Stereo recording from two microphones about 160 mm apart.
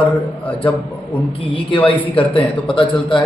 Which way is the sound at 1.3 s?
30° left (ahead or behind).